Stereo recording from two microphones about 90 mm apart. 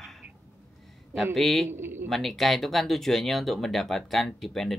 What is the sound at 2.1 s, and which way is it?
Speech, centre (ahead or behind).